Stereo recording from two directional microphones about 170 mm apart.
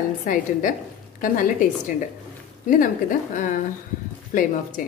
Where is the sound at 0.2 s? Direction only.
50° left (ahead or behind).